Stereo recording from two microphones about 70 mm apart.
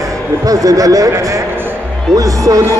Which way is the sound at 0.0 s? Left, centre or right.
Right.